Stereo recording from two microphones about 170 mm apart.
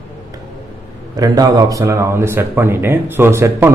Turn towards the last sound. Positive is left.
turn(degrees=-15)  # may be behind; listen again after turning